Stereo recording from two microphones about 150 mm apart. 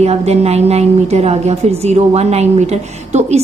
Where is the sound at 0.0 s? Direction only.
45° right (ahead or behind).